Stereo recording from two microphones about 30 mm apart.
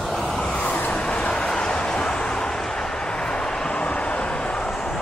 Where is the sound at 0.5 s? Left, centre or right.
Left.